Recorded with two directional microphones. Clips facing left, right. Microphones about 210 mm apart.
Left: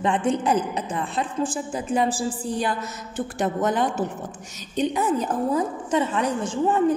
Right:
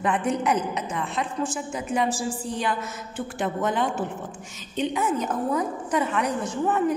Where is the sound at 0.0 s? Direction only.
30° left (ahead or behind).